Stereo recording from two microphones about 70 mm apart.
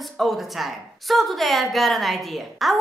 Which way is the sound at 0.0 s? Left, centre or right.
Centre.